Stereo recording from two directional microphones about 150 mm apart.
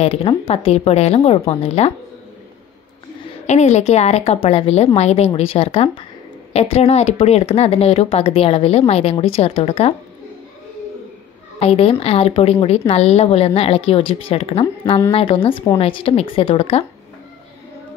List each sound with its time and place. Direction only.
0.0 s speech: 40° left (ahead or behind)
3.4 s speech: 50° left (ahead or behind)
11.6 s speech: 40° left (ahead or behind)